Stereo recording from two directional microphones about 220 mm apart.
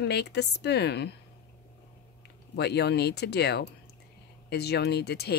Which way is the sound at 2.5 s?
50° left (ahead or behind).